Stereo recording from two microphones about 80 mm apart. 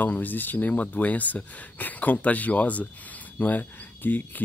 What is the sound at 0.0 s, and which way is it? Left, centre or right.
Speech, left.